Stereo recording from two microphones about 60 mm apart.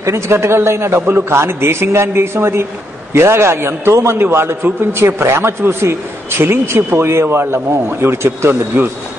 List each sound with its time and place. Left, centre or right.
0.0 s a man's voice: right